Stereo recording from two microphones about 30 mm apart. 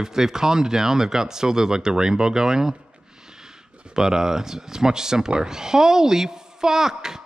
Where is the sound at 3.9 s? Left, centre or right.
Centre.